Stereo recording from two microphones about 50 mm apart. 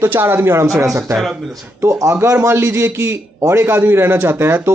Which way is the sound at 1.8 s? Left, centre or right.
Right.